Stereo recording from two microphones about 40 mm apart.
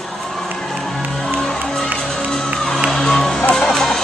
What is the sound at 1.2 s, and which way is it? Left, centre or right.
Music, centre.